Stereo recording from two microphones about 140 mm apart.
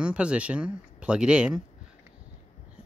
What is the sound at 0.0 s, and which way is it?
Speech, 10° right (ahead or behind).